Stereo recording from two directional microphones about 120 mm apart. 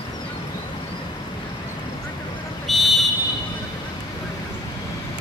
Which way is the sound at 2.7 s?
Centre (ahead or behind).